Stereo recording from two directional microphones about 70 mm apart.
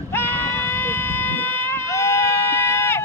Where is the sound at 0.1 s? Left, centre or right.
Left.